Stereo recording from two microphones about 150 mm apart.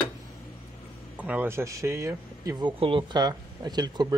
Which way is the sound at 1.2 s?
10° right (ahead or behind).